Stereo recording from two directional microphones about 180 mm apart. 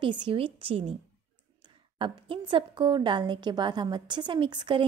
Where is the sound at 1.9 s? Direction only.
30° right (ahead or behind).